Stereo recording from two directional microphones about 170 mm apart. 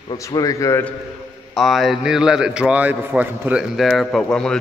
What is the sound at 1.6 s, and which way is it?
A man's voice, centre (ahead or behind).